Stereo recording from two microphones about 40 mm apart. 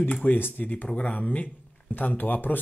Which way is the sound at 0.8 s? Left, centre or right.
Left.